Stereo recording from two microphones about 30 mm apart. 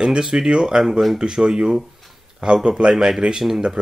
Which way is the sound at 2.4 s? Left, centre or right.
Right.